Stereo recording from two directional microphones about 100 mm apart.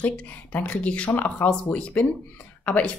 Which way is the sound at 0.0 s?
15° left (ahead or behind).